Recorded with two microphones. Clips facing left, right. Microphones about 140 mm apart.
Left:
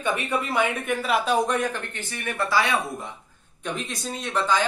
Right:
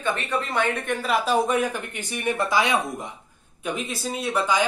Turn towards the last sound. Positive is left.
turn(degrees=-10)  # may be behind; listen again after turning